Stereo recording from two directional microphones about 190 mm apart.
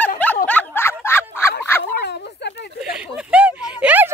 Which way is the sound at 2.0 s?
60° left (ahead or behind).